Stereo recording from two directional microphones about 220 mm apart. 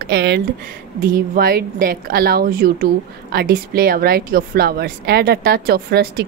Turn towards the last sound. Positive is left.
turn(degrees=-45)  # may be behind; listen again after turning